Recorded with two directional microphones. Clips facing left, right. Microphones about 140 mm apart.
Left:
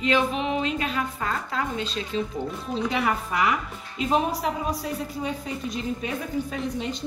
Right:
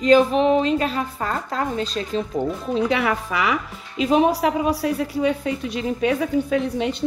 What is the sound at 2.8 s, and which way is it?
A woman's voice, 75° right (ahead or behind).